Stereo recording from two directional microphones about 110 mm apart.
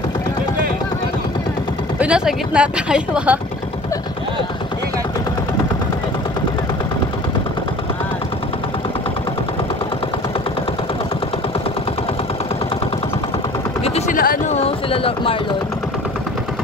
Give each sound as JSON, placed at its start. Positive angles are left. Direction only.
{"t": 2.0, "sound": "speech", "side_deg": -10}
{"t": 13.8, "sound": "a sound", "side_deg": 80}
{"t": 14.9, "sound": "speech", "side_deg": 55}